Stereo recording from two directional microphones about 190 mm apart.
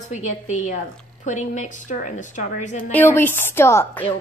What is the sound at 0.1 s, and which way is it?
A woman's voice, 40° left (ahead or behind).